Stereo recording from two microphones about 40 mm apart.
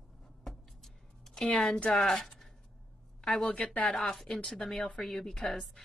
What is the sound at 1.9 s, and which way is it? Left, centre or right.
Speech, centre.